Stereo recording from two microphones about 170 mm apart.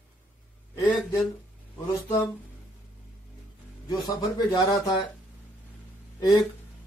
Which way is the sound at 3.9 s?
25° left (ahead or behind).